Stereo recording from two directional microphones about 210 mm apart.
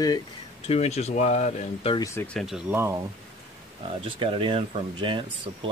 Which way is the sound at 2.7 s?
10° right (ahead or behind).